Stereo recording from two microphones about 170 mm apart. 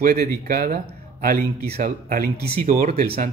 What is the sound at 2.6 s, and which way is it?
Speech, 45° right (ahead or behind).